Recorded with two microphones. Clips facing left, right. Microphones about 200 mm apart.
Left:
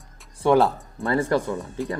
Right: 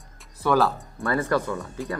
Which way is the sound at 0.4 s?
25° left (ahead or behind).